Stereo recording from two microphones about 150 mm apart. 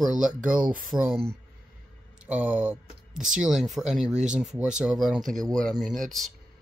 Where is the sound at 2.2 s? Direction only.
10° right (ahead or behind).